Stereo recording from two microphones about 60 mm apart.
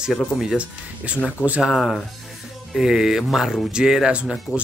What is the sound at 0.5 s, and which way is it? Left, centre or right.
Speech, right.